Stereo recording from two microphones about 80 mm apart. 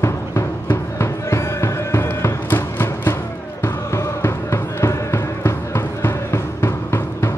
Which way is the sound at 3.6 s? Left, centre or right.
Left.